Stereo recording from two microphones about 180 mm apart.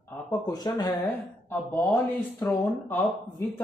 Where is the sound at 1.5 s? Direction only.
10° left (ahead or behind).